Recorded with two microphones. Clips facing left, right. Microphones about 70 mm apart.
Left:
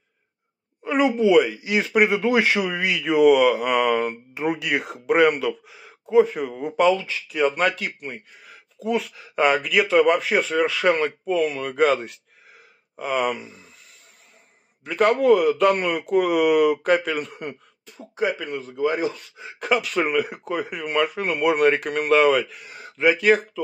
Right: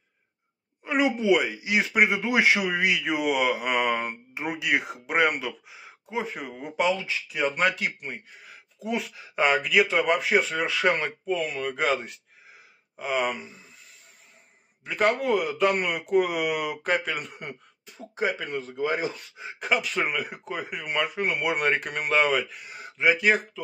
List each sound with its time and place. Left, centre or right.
0.8 s speech: centre
6.3 s speech: centre
6.8 s speech: centre
8.8 s speech: centre
11.2 s speech: centre
13.0 s speech: centre
14.9 s speech: centre
18.4 s a man's voice: right
19.3 s speech: centre